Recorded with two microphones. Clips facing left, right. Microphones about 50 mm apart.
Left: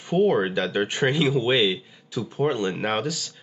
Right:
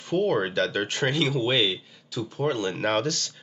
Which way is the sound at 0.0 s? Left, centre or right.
Centre.